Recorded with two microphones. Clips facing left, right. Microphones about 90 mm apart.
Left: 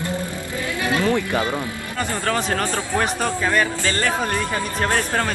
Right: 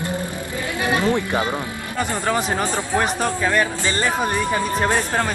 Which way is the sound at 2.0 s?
10° right (ahead or behind).